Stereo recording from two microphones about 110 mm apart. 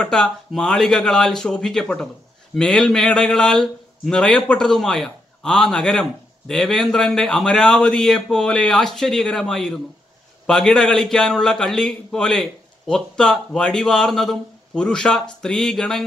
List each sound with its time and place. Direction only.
0.0 s a man's voice: 5° left (ahead or behind)